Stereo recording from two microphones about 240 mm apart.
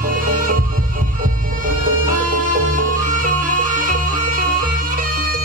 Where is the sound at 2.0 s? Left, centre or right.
Right.